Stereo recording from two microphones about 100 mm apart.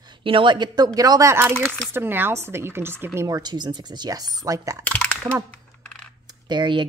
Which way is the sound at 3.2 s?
40° right (ahead or behind).